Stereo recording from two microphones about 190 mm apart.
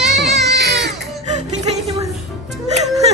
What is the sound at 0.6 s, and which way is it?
Music, 60° right (ahead or behind).